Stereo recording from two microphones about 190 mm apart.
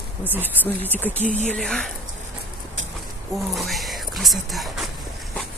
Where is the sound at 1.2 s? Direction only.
40° left (ahead or behind).